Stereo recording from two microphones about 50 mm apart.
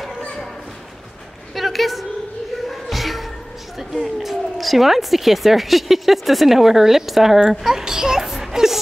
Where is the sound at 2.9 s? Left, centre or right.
Centre.